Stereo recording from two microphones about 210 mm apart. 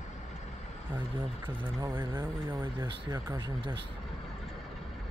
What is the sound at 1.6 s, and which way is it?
Speech, 20° right (ahead or behind).